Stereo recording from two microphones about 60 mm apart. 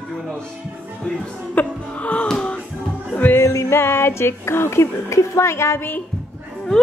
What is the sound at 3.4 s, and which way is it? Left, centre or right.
Music, left.